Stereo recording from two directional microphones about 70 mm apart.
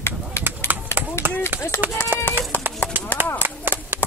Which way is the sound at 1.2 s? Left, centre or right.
Left.